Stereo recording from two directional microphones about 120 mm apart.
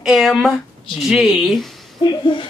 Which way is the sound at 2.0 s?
40° left (ahead or behind).